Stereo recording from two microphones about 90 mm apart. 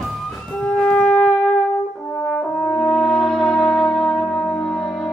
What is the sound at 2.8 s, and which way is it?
Brass instrument, centre (ahead or behind).